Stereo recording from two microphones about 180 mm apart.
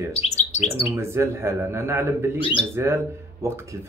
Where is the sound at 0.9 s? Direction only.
15° right (ahead or behind).